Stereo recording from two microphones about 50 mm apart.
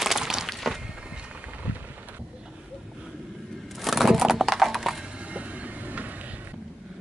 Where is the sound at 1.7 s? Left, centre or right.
Right.